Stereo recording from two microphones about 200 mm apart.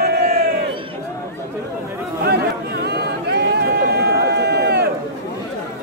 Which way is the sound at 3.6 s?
55° right (ahead or behind).